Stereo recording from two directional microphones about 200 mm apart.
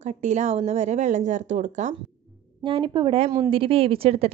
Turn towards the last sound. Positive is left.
turn(degrees=-30)  # may be behind; listen again after turning